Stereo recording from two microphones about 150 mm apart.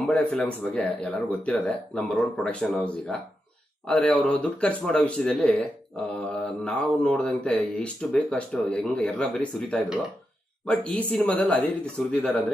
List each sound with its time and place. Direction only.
0.0 s speech: 10° left (ahead or behind)